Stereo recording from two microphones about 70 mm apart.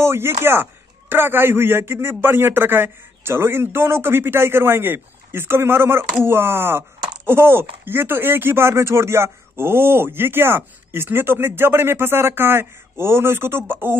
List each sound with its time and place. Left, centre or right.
0.0 s speech: right